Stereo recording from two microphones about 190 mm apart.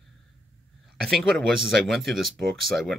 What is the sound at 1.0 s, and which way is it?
Speech, centre (ahead or behind).